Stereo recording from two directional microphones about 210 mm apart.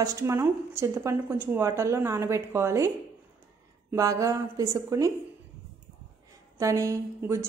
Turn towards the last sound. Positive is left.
turn(degrees=-15)  # may be behind; listen again after turning